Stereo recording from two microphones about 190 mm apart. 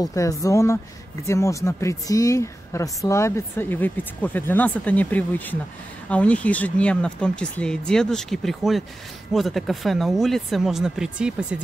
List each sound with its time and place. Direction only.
0.0 s speech: 15° left (ahead or behind); by 11.6 s 5° right (ahead or behind)